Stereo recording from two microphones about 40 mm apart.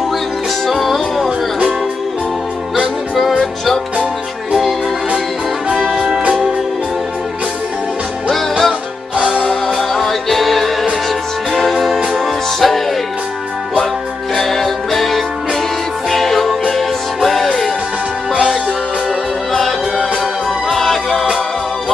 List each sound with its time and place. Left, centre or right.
0.7 s music: centre
3.2 s music: centre
5.9 s music: centre
8.3 s music: centre
9.1 s music: right
9.4 s music: centre
14.3 s music: centre
18.3 s music: centre
19.5 s music: centre